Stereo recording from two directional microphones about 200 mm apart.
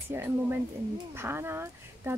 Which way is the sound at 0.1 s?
10° right (ahead or behind).